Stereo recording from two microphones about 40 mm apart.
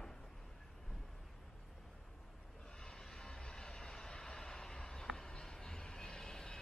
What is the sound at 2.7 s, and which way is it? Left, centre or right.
Train, centre.